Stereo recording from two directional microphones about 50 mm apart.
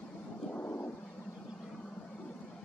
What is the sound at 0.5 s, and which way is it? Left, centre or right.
Vehicle, left.